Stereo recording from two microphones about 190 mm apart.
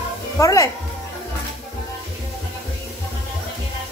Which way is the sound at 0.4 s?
15° left (ahead or behind).